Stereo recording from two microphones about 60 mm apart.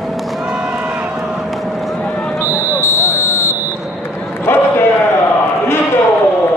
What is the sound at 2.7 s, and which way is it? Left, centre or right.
Buzzer, left.